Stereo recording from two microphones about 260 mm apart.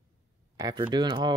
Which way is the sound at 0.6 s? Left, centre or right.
Centre.